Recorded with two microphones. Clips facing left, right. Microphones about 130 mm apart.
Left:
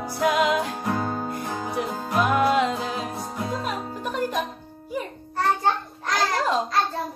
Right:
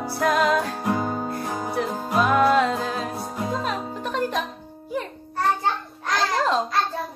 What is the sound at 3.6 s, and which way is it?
Music, 10° left (ahead or behind).